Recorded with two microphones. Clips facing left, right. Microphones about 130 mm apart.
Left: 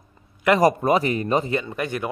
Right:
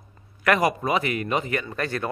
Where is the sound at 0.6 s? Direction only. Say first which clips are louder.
Left 5 dB; 40° left (ahead or behind).